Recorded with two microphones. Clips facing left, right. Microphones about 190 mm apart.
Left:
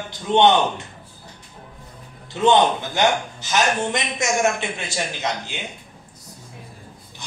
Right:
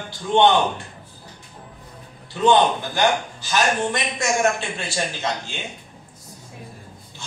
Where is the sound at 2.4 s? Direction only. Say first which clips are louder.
Even; 20° left (ahead or behind).